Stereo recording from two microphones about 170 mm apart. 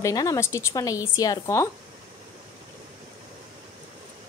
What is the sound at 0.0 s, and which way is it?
A woman's voice, 20° left (ahead or behind).